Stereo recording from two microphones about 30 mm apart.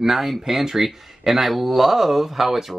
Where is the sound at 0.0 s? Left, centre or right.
Centre.